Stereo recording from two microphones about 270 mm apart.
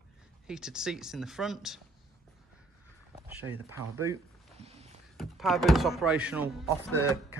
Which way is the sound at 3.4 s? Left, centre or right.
Centre.